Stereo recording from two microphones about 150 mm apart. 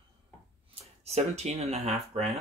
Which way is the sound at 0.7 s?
45° right (ahead or behind).